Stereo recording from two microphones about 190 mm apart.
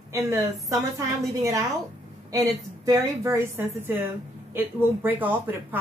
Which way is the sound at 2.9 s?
15° right (ahead or behind).